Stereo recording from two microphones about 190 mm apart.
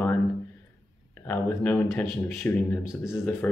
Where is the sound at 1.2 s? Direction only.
10° left (ahead or behind).